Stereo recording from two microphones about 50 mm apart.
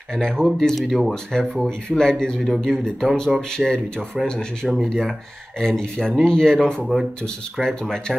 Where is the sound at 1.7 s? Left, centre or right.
Centre.